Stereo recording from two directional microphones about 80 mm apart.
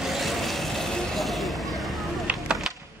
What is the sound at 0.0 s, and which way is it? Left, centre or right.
Vehicle, centre.